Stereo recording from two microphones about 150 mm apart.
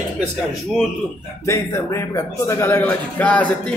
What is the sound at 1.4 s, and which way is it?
A man's voice, 20° left (ahead or behind).